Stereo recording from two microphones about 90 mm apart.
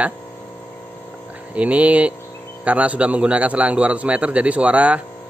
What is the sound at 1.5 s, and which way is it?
Speech, 15° right (ahead or behind).